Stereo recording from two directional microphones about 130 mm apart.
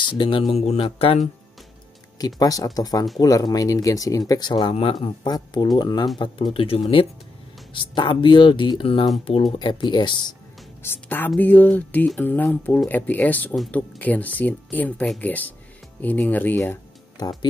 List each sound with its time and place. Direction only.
0.0 s speech: 40° left (ahead or behind)
2.1 s speech: 30° left (ahead or behind)
10.8 s speech: 15° left (ahead or behind)
17.2 s speech: 30° left (ahead or behind)